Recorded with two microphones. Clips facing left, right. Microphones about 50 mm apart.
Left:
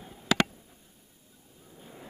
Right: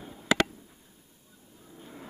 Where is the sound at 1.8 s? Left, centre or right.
Centre.